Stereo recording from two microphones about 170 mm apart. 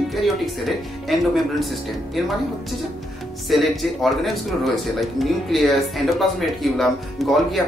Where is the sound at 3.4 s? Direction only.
Centre (ahead or behind).